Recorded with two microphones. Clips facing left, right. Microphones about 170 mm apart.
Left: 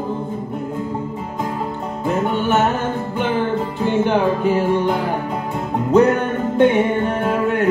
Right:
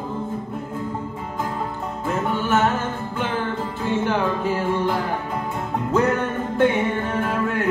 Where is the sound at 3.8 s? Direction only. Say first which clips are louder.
Left 5 dB; 25° left (ahead or behind).